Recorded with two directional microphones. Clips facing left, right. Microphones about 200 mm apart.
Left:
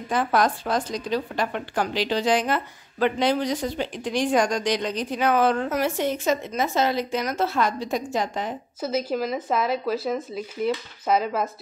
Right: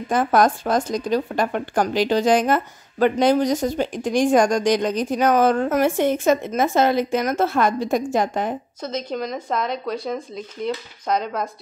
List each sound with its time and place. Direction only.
0.1 s speech: 45° right (ahead or behind)
8.8 s speech: 5° left (ahead or behind)